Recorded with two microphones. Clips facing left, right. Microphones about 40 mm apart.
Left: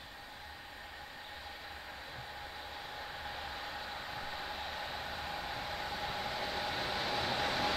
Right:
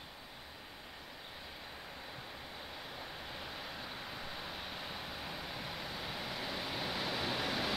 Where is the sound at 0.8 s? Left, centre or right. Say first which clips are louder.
Left 3 dB; centre.